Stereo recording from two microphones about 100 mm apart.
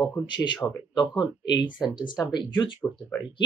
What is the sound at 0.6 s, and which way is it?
Speech, 20° left (ahead or behind).